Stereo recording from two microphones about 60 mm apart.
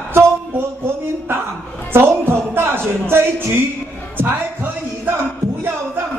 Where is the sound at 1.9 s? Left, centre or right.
Right.